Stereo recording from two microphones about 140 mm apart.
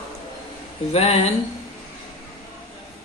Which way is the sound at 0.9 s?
50° left (ahead or behind).